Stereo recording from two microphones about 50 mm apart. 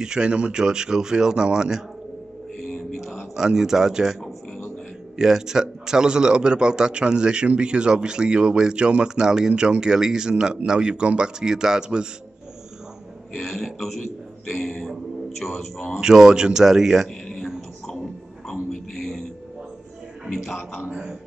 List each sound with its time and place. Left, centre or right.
0.0 s a man's voice: centre
3.1 s a man's voice: centre
13.4 s a man's voice: centre
18.5 s a sound: centre
20.4 s speech: centre
20.8 s speech: right